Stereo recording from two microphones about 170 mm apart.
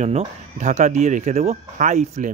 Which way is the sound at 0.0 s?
40° right (ahead or behind).